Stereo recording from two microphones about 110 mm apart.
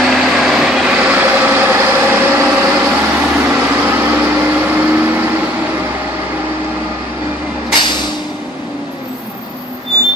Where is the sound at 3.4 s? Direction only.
15° right (ahead or behind).